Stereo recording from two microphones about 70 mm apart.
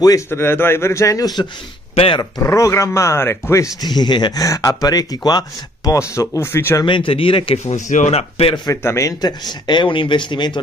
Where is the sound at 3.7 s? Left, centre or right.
Left.